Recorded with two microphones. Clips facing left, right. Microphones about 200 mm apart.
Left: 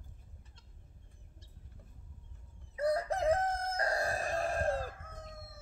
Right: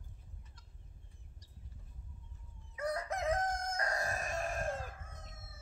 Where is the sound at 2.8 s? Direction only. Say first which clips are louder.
Left 6 dB; 30° left (ahead or behind).